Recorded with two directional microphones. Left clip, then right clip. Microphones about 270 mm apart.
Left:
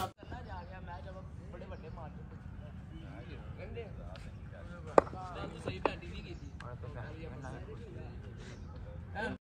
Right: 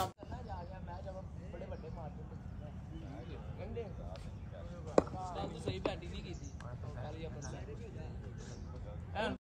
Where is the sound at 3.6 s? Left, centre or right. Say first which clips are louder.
Right 2 dB; right.